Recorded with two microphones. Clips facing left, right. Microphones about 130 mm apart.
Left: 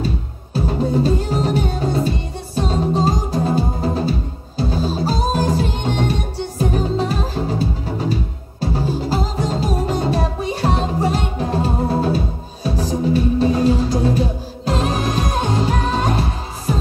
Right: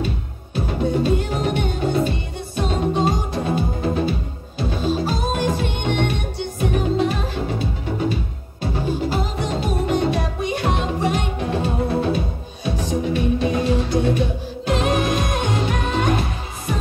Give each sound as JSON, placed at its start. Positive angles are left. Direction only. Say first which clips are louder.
{"t": 0.7, "sound": "music", "louder": "left 2 dB", "side_deg": 35}